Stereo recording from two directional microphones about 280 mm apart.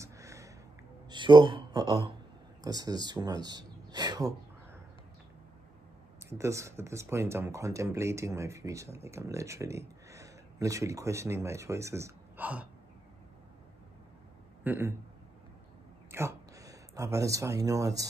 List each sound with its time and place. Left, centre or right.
0.0 s a sound: centre
2.6 s speech: centre
6.2 s speech: centre
14.6 s a man's voice: centre
16.1 s speech: centre